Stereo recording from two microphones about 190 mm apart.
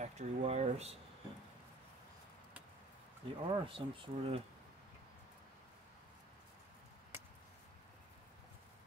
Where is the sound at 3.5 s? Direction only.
30° right (ahead or behind).